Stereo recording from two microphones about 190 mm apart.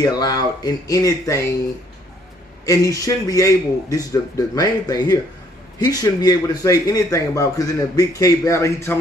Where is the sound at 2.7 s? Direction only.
15° left (ahead or behind).